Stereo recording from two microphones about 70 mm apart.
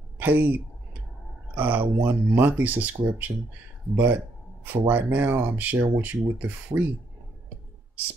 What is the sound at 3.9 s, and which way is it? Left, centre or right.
Speech, right.